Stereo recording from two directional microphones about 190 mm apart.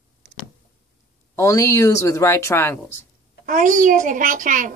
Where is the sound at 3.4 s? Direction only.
45° right (ahead or behind).